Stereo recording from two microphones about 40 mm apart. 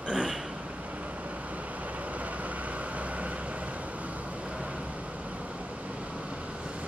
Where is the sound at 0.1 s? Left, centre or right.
Right.